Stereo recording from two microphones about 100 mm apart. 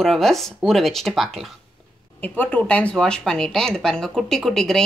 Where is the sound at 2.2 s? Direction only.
15° left (ahead or behind).